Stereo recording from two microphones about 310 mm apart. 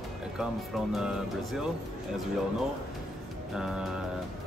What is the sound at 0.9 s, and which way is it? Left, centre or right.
Speech, centre.